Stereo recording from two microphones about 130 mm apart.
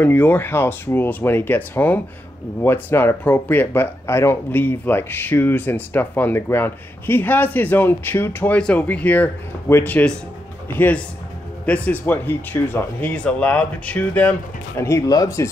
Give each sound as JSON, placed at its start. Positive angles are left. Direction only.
{"t": 0.0, "sound": "speech", "side_deg": 15}
{"t": 11.6, "sound": "speech", "side_deg": 10}
{"t": 14.8, "sound": "speech", "side_deg": 20}